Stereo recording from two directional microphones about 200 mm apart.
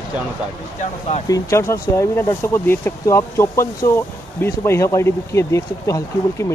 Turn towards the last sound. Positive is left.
turn(degrees=15)  # may be behind; listen again after turning